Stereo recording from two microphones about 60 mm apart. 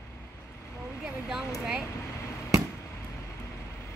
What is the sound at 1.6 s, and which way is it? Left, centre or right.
Air conditioning, centre.